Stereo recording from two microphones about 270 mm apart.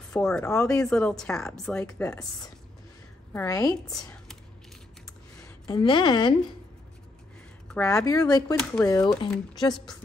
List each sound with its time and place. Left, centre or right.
0.1 s speech: centre
3.3 s speech: centre
5.7 s speech: centre
7.6 s speech: centre